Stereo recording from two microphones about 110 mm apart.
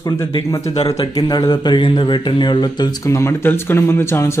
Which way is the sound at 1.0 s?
40° left (ahead or behind).